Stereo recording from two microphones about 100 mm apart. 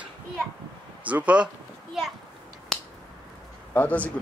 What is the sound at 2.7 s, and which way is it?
Finger snapping, 5° left (ahead or behind).